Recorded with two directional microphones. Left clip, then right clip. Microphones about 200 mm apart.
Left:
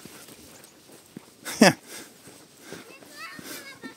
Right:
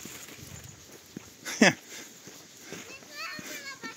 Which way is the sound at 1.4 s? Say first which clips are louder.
Left 4 dB; 30° left (ahead or behind).